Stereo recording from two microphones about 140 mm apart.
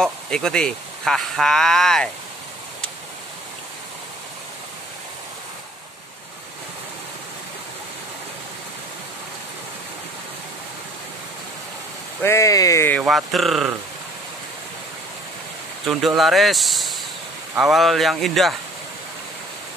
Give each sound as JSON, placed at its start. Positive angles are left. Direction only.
{"t": 0.0, "sound": "speech", "side_deg": 5}
{"t": 12.2, "sound": "speech", "side_deg": 20}
{"t": 13.0, "sound": "speech", "side_deg": 0}
{"t": 15.8, "sound": "speech", "side_deg": 0}